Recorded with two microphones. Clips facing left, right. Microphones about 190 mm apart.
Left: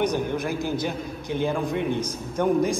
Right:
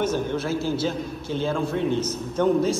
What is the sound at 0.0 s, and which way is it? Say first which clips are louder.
A man's voice: even; 15° left (ahead or behind).